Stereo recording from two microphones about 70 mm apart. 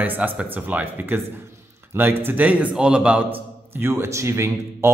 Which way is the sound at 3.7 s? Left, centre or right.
Right.